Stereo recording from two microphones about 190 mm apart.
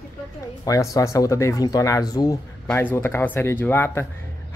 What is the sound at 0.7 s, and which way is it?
Speech, 15° left (ahead or behind).